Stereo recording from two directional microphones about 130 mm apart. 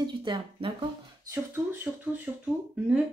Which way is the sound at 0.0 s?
35° right (ahead or behind).